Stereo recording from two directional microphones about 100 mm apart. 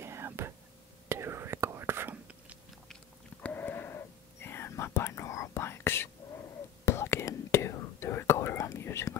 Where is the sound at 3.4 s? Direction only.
20° left (ahead or behind).